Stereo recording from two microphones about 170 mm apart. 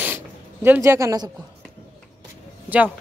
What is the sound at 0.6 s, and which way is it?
Speech, 10° right (ahead or behind).